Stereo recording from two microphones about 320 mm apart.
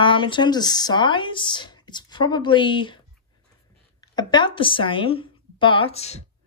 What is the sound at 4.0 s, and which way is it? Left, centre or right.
A woman's voice, centre.